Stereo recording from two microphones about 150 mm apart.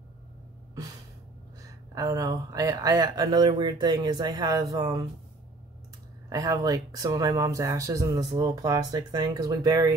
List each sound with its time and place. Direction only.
1.7 s speech: 25° right (ahead or behind)
6.2 s speech: 25° right (ahead or behind)